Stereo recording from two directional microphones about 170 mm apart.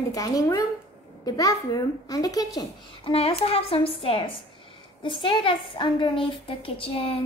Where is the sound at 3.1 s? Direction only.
35° left (ahead or behind).